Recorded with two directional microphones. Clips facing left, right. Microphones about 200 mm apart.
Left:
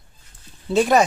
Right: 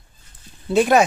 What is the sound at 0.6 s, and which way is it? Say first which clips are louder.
Speech: right 1 dB; centre (ahead or behind).